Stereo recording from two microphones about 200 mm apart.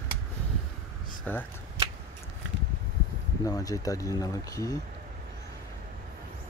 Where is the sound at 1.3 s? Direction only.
10° left (ahead or behind).